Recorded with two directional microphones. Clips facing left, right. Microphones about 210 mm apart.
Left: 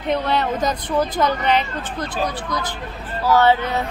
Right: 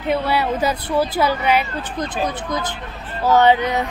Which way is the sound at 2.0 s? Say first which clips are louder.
Right 1 dB; 20° right (ahead or behind).